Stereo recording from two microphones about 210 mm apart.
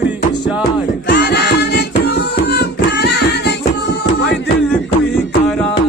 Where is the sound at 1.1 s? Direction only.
55° left (ahead or behind).